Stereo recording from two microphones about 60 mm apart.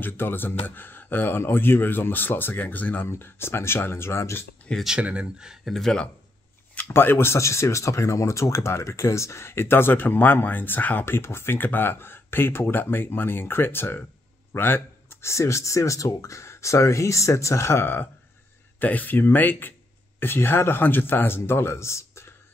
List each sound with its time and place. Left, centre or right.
0.0 s speech: left
3.1 s speech: left
4.7 s speech: centre
5.0 s speech: centre
5.7 s speech: centre
6.8 s speech: left
11.1 s speech: left
14.5 s a sound: left
15.3 s speech: left
18.8 s speech: left